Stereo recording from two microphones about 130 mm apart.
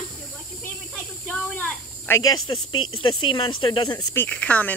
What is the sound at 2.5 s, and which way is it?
Speech, 40° left (ahead or behind).